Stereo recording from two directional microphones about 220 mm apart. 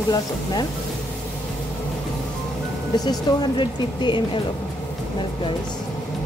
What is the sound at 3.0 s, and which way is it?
Speech, 20° left (ahead or behind).